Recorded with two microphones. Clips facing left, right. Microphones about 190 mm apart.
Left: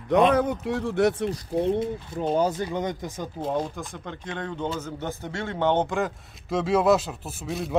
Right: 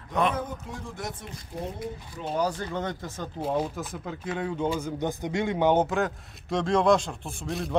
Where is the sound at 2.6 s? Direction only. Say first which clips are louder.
Left 3 dB; 15° left (ahead or behind).